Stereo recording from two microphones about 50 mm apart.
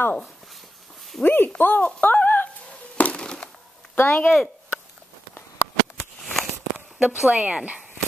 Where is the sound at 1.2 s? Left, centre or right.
Left.